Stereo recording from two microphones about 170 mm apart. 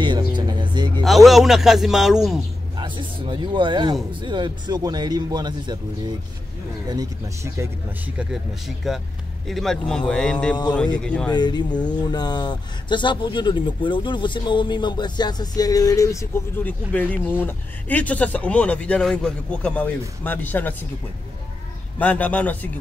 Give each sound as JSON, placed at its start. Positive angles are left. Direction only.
{"t": 0.0, "sound": "music", "side_deg": -25}
{"t": 1.0, "sound": "a man's voice", "side_deg": 0}
{"t": 2.8, "sound": "speech", "side_deg": -30}
{"t": 8.2, "sound": "speech", "side_deg": 0}
{"t": 11.3, "sound": "speech", "side_deg": 25}
{"t": 21.9, "sound": "a man's voice", "side_deg": 10}